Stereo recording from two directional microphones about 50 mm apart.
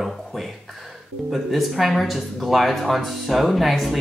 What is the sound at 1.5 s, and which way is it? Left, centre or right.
Speech, centre.